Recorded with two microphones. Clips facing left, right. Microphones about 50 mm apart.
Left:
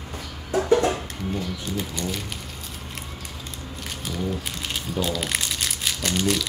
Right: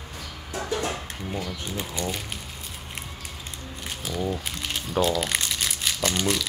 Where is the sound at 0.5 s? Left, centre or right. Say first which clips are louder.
Left 9 dB; left.